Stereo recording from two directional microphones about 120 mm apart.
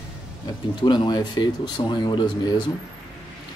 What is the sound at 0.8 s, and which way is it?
Speech, 40° left (ahead or behind).